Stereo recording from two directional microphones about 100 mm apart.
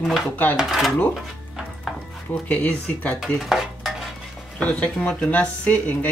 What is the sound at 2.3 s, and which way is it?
Speech, 15° left (ahead or behind).